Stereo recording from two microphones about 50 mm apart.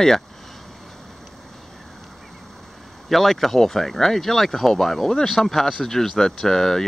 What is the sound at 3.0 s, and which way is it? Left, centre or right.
Speech, centre.